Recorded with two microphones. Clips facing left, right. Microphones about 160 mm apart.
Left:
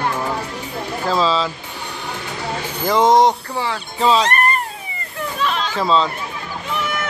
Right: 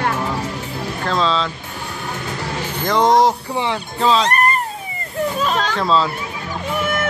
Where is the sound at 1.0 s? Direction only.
5° left (ahead or behind).